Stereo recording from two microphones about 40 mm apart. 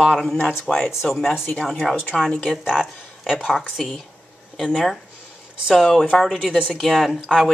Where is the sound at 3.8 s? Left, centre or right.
Centre.